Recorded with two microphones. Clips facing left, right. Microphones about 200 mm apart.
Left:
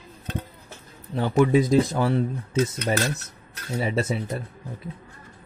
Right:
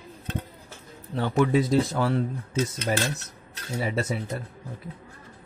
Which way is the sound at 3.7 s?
25° left (ahead or behind).